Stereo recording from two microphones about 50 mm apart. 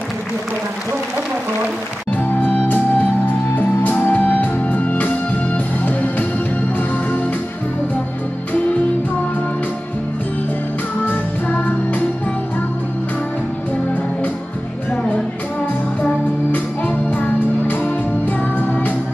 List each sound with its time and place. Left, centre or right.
2.1 s music: left
11.1 s music: left
16.5 s music: left